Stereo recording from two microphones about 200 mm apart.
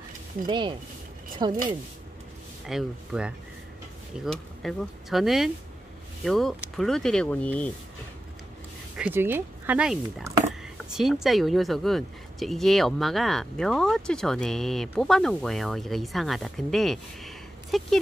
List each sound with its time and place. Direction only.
0.5 s speech: 25° right (ahead or behind)
2.7 s a woman's voice: 5° right (ahead or behind)
8.9 s a woman's voice: 10° right (ahead or behind)